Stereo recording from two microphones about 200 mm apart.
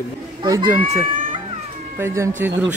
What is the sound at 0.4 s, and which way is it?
Speech, 25° right (ahead or behind).